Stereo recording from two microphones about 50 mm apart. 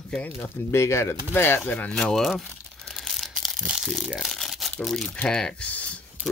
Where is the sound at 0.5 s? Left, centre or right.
Left.